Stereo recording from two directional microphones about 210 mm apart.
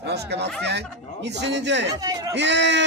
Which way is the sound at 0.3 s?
50° right (ahead or behind).